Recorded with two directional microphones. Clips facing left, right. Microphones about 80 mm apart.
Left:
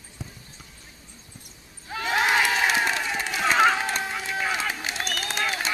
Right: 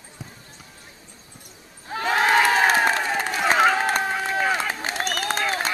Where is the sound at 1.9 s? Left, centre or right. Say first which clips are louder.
Right 3 dB; right.